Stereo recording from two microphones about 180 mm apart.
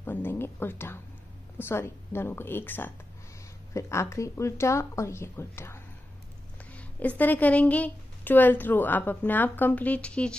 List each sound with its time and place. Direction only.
0.0 s speech: 10° left (ahead or behind)